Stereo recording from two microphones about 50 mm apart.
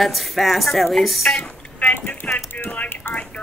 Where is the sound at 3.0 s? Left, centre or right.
Left.